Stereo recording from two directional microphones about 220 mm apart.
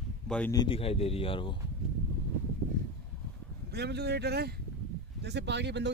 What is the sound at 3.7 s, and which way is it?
Speech, 50° right (ahead or behind).